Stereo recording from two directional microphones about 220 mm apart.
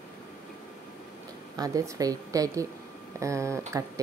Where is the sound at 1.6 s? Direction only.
15° right (ahead or behind).